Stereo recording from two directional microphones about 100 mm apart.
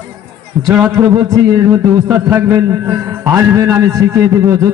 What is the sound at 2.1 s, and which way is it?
Speech, 15° right (ahead or behind).